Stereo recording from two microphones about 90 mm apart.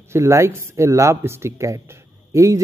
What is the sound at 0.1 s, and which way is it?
A man's voice, 30° right (ahead or behind).